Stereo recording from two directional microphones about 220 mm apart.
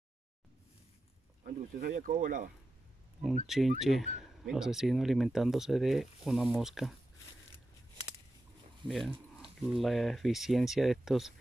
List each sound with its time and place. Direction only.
1.4 s speech: 40° right (ahead or behind)
3.4 s speech: centre (ahead or behind)
8.8 s speech: centre (ahead or behind)